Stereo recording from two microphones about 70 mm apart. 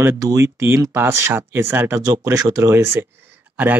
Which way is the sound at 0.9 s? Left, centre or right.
Right.